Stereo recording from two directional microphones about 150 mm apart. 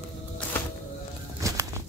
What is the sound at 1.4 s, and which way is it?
Bird flight, 20° right (ahead or behind).